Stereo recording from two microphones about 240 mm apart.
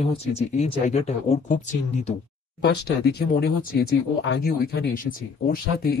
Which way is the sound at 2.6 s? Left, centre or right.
Left.